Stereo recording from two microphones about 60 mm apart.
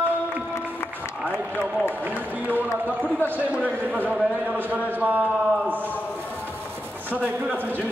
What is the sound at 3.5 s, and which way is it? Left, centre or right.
Speech, right.